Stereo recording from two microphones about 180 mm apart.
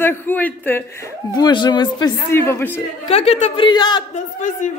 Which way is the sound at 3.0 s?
35° left (ahead or behind).